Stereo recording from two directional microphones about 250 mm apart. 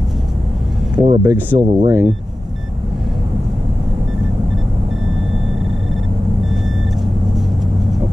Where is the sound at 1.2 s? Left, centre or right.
Centre.